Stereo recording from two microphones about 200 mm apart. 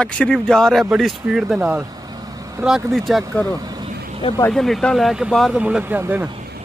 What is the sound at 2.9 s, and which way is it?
Speech, centre (ahead or behind).